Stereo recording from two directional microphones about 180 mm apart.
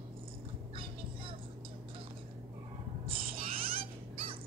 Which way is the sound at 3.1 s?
30° right (ahead or behind).